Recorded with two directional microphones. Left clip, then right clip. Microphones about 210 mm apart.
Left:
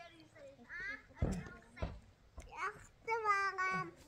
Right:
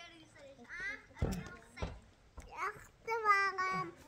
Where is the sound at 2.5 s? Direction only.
10° right (ahead or behind).